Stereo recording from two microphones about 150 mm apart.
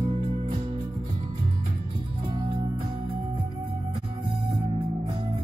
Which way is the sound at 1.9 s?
35° right (ahead or behind).